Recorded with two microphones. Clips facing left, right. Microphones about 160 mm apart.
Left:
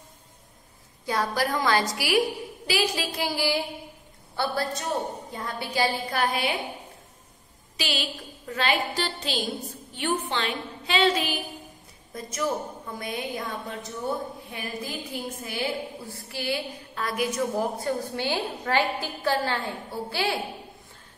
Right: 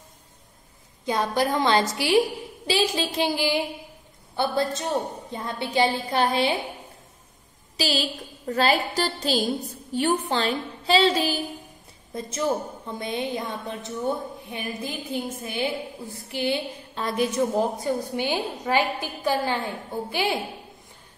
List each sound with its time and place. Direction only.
1.0 s a woman's voice: 20° right (ahead or behind)
7.7 s a woman's voice: 35° right (ahead or behind); by 20.3 s 15° right (ahead or behind)